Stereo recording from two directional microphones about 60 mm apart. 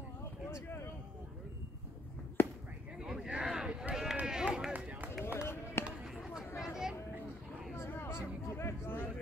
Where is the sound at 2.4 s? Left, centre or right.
Left.